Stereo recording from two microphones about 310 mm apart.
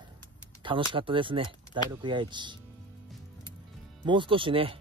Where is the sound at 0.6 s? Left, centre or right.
Centre.